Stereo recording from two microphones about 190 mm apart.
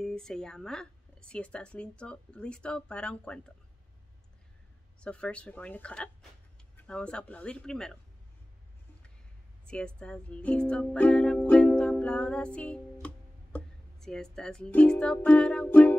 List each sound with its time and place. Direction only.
0.0 s speech: 5° left (ahead or behind)
5.0 s speech: 5° left (ahead or behind)
9.7 s speech: 5° left (ahead or behind)
13.0 s music: 5° left (ahead or behind)